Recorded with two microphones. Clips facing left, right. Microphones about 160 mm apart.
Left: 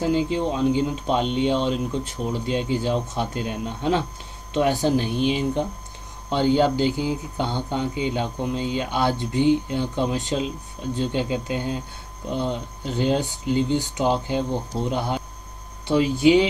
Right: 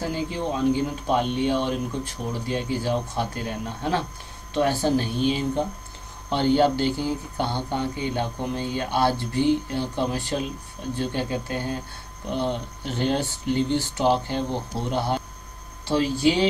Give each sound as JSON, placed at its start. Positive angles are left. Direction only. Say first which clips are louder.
{"t": 0.0, "sound": "speech", "louder": "left 6 dB", "side_deg": 20}
{"t": 12.9, "sound": "speech", "louder": "left 2 dB", "side_deg": 15}